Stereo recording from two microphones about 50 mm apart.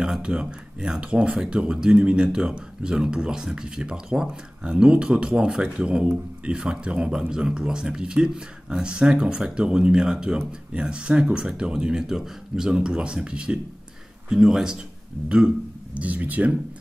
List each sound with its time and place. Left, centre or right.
0.0 s speech: centre
15.2 s speech: right